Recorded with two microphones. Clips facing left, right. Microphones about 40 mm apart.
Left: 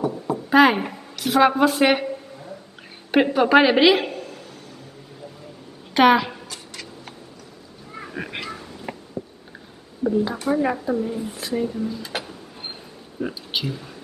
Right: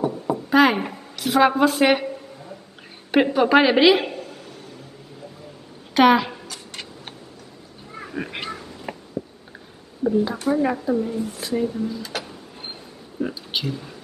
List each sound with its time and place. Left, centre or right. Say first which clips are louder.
0.4 s a sound: left 2 dB; centre
3.1 s a woman's voice: even; centre
5.9 s a woman's voice: even; centre
8.0 s cat: right 1 dB; centre
10.0 s speech: right 1 dB; centre
12.0 s speech: even; centre
13.2 s speech: right 1 dB; centre